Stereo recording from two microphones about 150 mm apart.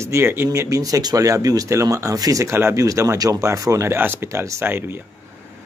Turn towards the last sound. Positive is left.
turn(degrees=-15)  # may be behind; listen again after turning